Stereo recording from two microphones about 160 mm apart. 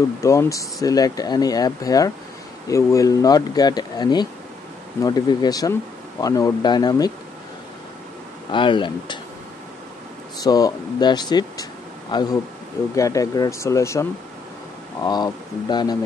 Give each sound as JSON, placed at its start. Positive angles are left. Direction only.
{"t": 0.2, "sound": "speech", "side_deg": 20}
{"t": 8.5, "sound": "speech", "side_deg": 30}
{"t": 10.4, "sound": "speech", "side_deg": 25}
{"t": 15.0, "sound": "speech", "side_deg": 25}